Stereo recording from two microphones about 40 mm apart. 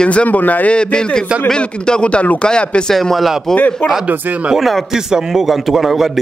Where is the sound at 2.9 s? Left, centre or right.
Centre.